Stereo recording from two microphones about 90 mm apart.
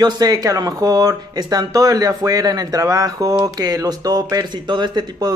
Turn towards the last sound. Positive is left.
turn(degrees=-50)  # may be behind; listen again after turning